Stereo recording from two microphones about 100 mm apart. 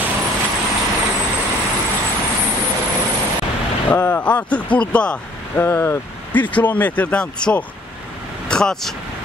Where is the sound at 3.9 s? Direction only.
15° left (ahead or behind).